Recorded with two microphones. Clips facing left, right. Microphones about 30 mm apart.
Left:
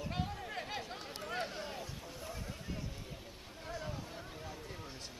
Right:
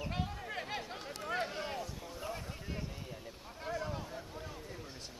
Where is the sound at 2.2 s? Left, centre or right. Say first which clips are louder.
Right 3 dB; right.